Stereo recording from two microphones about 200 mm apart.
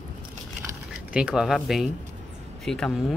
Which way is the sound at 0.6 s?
5° right (ahead or behind).